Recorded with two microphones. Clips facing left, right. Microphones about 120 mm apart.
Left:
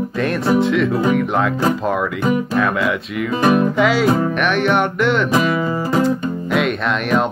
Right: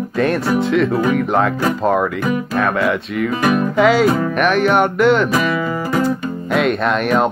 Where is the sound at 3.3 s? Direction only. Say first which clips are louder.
Left 2 dB; 25° left (ahead or behind).